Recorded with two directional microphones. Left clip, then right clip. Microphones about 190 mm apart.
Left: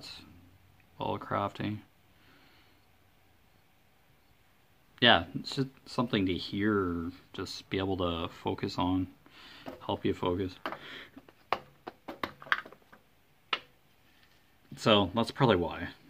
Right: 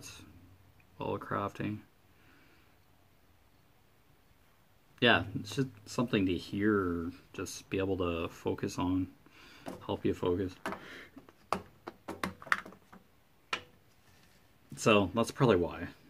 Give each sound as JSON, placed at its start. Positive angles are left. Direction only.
{"t": 0.9, "sound": "speech", "side_deg": 15}
{"t": 4.9, "sound": "speech", "side_deg": 15}
{"t": 14.8, "sound": "speech", "side_deg": 15}